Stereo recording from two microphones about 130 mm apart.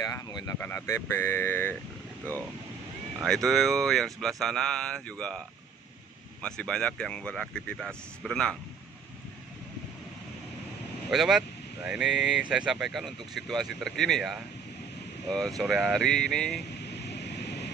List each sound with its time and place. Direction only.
0.0 s speech: 30° left (ahead or behind)
0.6 s speech: 15° left (ahead or behind)
3.4 s speech: centre (ahead or behind)
6.4 s speech: 5° left (ahead or behind)
11.1 s speech: centre (ahead or behind)